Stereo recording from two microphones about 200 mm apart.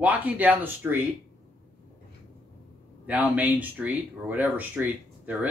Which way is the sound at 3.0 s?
5° right (ahead or behind).